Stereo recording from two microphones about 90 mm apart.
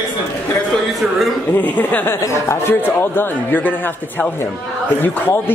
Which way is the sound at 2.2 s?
30° left (ahead or behind).